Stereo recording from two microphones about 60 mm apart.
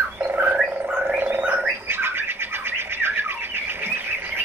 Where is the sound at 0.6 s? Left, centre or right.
Centre.